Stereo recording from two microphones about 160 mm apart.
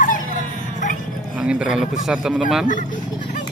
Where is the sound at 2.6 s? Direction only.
55° left (ahead or behind).